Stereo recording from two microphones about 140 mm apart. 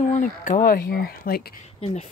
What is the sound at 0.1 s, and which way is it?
Speech, 70° left (ahead or behind).